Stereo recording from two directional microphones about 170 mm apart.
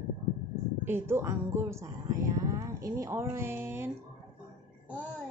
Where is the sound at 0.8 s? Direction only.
15° right (ahead or behind).